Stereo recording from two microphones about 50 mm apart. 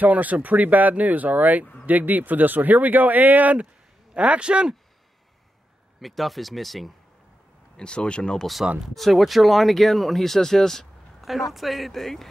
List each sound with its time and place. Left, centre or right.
0.0 s speech: right
5.9 s speech: centre
7.7 s speech: centre
8.8 s speech: centre
11.1 s a sound: centre
11.5 s speech: centre